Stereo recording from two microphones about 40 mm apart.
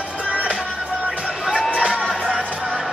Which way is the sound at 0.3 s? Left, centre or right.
Right.